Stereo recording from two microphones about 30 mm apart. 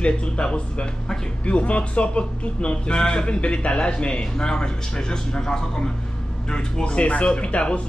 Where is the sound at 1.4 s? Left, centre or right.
Left.